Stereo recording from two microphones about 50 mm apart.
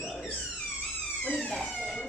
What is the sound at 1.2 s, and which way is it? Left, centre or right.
Police car, left.